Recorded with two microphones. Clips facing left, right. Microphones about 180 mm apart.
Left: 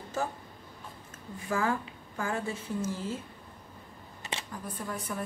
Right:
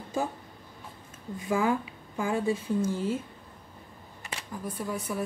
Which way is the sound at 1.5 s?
15° right (ahead or behind).